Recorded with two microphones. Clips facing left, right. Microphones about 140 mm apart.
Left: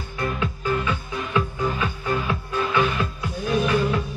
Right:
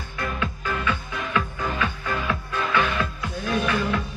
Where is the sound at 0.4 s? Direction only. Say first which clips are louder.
Left 4 dB; 30° left (ahead or behind).